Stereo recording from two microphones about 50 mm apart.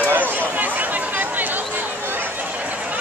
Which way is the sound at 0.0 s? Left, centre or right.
Right.